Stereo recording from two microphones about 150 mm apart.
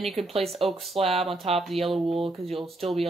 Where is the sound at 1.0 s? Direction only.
40° right (ahead or behind).